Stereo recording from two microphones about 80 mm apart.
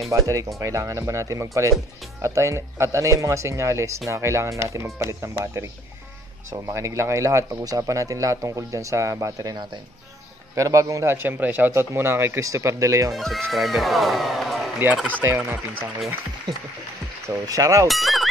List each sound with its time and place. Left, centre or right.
0.1 s speech: right
13.1 s speech: centre
15.0 s speech: right
17.5 s speech: right
17.8 s speech: centre